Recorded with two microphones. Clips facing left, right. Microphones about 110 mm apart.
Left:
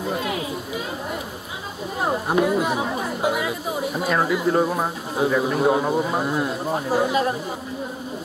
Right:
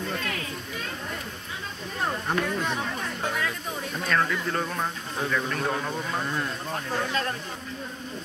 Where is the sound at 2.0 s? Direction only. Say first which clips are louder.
Left 7 dB; 10° left (ahead or behind).